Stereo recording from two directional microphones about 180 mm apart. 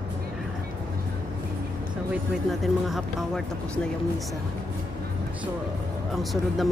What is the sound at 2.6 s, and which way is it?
Speech, centre (ahead or behind).